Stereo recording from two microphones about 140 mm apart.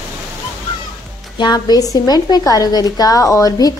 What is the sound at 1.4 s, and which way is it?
A woman's voice, 30° left (ahead or behind).